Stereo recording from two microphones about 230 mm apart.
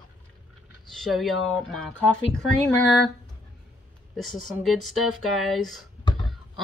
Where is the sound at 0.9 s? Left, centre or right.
Centre.